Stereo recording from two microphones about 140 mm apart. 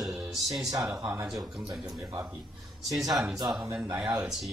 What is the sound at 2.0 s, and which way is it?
Speech, 25° right (ahead or behind).